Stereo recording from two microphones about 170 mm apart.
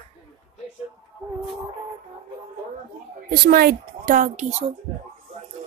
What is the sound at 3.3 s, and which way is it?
A woman's voice, 65° right (ahead or behind).